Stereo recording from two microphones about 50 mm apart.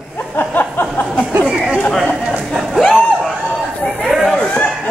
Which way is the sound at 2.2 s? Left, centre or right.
Centre.